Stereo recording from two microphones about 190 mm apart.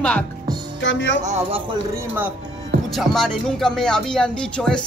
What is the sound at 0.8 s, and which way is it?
Speech, 70° left (ahead or behind).